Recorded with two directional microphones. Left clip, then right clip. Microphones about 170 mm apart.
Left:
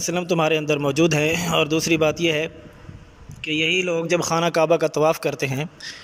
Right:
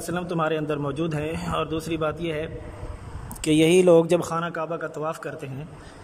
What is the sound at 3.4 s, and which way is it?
Speech, 35° right (ahead or behind).